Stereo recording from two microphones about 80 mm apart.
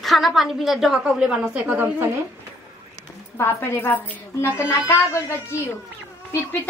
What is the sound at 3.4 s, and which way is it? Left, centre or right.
A woman's voice, left.